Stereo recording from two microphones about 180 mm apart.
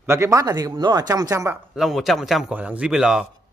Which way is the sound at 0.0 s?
15° right (ahead or behind).